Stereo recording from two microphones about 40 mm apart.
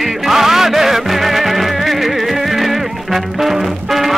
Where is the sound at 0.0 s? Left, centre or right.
Centre.